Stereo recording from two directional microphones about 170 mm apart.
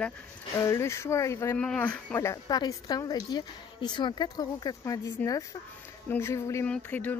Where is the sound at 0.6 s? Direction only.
15° left (ahead or behind).